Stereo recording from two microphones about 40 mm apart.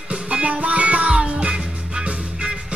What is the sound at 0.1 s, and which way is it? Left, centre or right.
Music, right.